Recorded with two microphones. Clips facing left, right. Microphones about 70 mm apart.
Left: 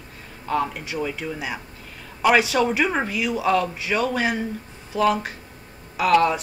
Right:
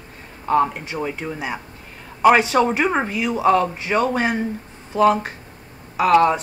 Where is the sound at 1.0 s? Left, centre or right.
Right.